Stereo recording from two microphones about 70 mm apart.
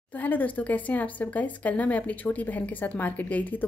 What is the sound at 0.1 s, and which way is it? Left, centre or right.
A woman's voice, left.